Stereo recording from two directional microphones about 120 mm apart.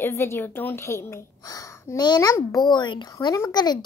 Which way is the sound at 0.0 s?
20° left (ahead or behind).